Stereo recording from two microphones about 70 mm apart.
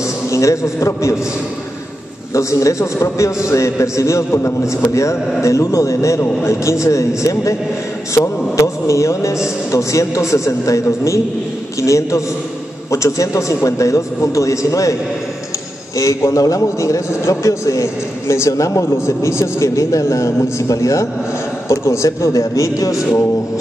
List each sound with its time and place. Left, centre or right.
0.3 s a man's voice: left
2.3 s a man's voice: left
16.0 s a man's voice: left